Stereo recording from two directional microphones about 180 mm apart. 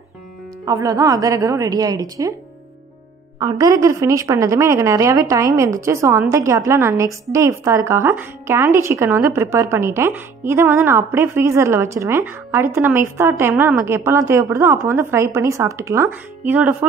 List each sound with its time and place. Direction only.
0.7 s a woman's voice: 20° right (ahead or behind)
3.3 s speech: 20° right (ahead or behind)